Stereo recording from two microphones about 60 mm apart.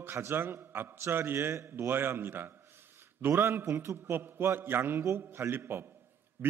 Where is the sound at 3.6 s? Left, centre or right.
Right.